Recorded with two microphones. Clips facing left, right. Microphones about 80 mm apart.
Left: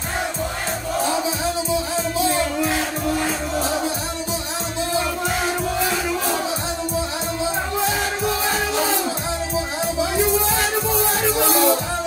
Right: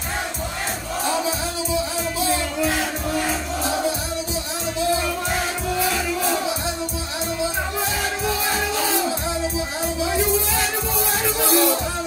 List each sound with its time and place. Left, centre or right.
10.5 s music: left